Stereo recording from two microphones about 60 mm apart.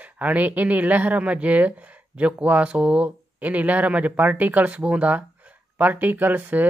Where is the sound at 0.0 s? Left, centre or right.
Right.